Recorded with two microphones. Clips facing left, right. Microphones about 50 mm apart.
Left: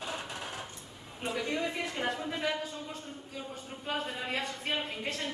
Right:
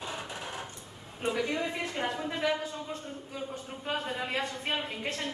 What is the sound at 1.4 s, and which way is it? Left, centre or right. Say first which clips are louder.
Speech: right 1 dB; right.